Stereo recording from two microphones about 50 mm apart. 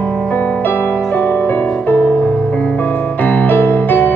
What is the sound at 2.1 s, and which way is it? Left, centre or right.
Music, left.